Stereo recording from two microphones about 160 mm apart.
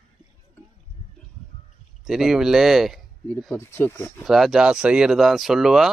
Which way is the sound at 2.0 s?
5° right (ahead or behind).